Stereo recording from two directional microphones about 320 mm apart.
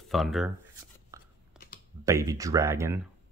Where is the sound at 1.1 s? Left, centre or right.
Centre.